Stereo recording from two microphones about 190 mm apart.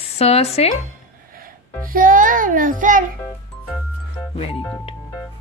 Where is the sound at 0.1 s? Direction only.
35° left (ahead or behind).